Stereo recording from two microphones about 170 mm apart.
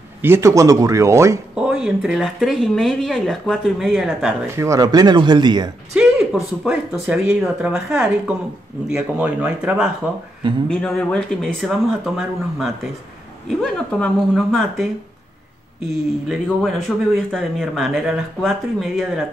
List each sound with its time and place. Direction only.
0.2 s speech: 15° right (ahead or behind)
1.5 s speech: 5° right (ahead or behind)
4.6 s speech: 20° right (ahead or behind)
5.9 s a sound: 5° right (ahead or behind)
6.6 s speech: 10° right (ahead or behind)
10.7 s speech: 5° left (ahead or behind)
16.3 s speech: centre (ahead or behind)